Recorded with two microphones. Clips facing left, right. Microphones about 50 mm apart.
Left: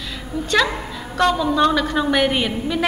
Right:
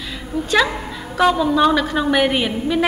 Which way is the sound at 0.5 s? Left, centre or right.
Centre.